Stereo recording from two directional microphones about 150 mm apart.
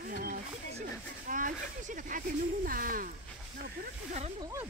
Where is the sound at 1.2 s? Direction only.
60° right (ahead or behind).